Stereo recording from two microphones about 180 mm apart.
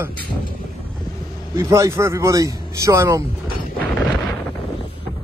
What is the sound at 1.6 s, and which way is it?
Speech, 15° right (ahead or behind).